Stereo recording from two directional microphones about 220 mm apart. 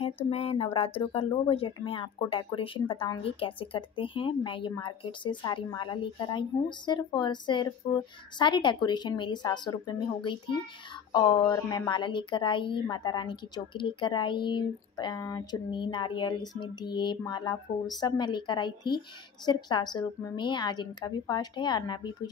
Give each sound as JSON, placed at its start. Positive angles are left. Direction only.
{"t": 0.3, "sound": "a woman's voice", "side_deg": 25}